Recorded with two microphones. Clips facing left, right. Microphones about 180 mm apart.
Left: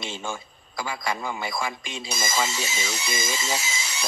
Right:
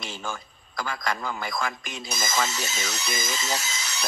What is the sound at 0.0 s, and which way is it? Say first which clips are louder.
Speech: left 2 dB; 25° left (ahead or behind).